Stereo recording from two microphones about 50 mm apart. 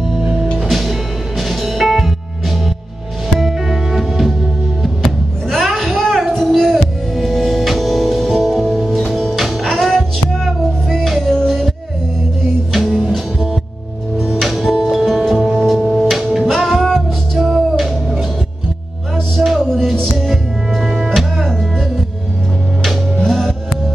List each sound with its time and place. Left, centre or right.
0.6 s music: centre
3.3 s music: centre
5.5 s music: centre
12.7 s music: centre
13.1 s music: centre